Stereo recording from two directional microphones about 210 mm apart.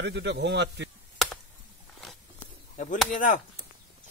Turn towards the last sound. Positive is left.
turn(degrees=40)  # may be behind; listen again after turning